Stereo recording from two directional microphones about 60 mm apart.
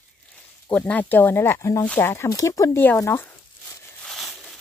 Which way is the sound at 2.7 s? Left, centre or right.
Left.